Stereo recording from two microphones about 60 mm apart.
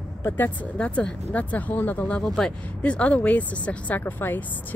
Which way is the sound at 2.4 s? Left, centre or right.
Centre.